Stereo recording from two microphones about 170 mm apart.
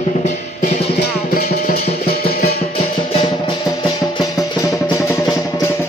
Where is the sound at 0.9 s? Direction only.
60° left (ahead or behind).